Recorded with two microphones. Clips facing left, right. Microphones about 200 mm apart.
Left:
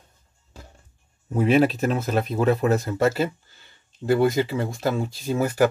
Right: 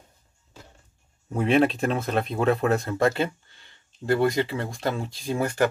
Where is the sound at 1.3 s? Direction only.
5° left (ahead or behind).